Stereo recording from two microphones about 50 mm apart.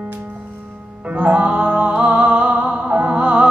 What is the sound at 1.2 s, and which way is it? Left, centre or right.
Music, right.